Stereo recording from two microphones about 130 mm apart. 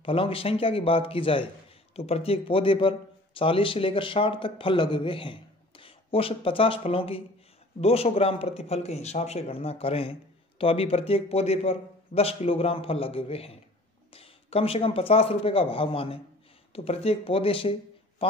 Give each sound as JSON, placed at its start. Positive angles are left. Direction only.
{"t": 0.0, "sound": "a man's voice", "side_deg": 45}